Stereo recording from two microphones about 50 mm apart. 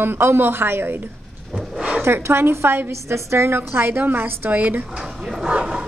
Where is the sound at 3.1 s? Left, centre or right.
Right.